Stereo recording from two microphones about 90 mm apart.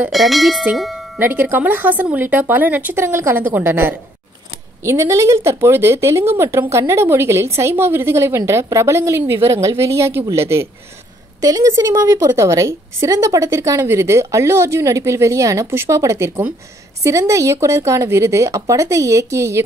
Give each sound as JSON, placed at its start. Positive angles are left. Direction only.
{"t": 0.1, "sound": "speech", "side_deg": 0}
{"t": 0.7, "sound": "doorbell", "side_deg": 0}
{"t": 1.2, "sound": "a woman's voice", "side_deg": -25}
{"t": 11.4, "sound": "a woman's voice", "side_deg": -40}